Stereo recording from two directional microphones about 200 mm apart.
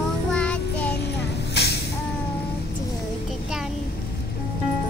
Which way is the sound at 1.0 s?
55° left (ahead or behind).